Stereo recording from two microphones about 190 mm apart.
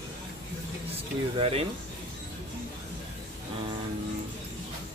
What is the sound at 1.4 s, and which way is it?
Speech, 30° right (ahead or behind).